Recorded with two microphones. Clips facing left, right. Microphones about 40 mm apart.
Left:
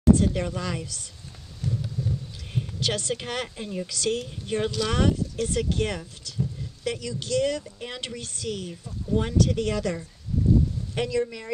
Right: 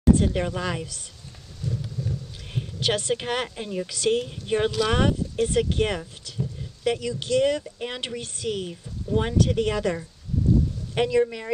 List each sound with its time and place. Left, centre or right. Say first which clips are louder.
0.0 s speech: even; centre
1.7 s a sound: left 1 dB; centre
2.5 s speech: right 2 dB; centre